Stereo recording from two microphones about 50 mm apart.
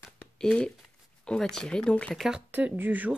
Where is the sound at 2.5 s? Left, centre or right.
Right.